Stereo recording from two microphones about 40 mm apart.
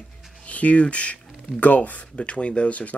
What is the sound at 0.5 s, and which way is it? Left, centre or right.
Speech, left.